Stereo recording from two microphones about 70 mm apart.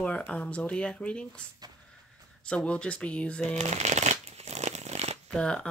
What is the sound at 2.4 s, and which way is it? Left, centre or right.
Speech, centre.